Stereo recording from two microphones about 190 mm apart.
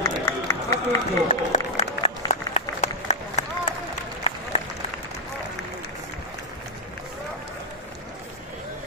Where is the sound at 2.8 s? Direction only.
40° left (ahead or behind).